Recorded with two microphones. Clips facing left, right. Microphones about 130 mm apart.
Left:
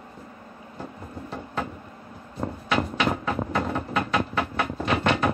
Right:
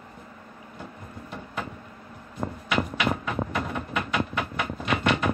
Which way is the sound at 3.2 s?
30° left (ahead or behind).